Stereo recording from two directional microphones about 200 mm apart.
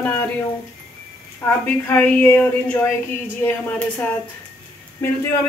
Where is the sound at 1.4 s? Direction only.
10° left (ahead or behind).